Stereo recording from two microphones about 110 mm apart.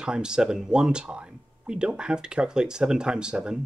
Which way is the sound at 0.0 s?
5° right (ahead or behind).